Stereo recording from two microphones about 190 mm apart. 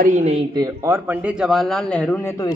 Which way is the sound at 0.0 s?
35° right (ahead or behind).